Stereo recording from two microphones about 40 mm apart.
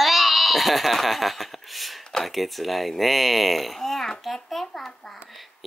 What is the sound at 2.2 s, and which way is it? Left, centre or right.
A child's voice, centre.